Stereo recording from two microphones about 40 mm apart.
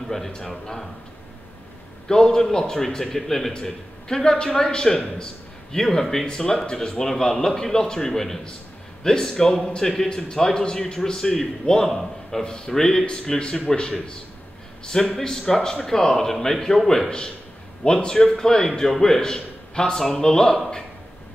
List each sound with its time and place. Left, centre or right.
2.0 s speech: centre
3.5 s a man's voice: centre